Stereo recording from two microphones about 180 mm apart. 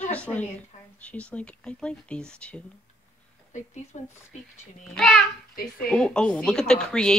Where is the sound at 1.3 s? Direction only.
5° left (ahead or behind).